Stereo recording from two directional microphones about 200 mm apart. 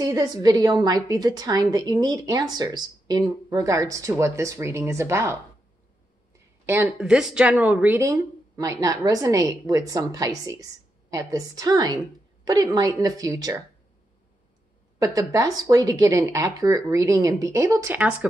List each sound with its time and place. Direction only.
0.0 s a woman's voice: 20° right (ahead or behind)
15.0 s speech: 15° right (ahead or behind)